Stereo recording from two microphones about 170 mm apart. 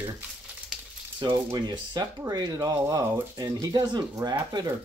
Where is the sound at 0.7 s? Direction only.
5° right (ahead or behind).